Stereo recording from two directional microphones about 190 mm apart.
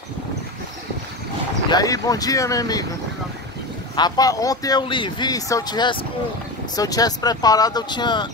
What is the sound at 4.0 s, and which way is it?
Speech, 20° left (ahead or behind).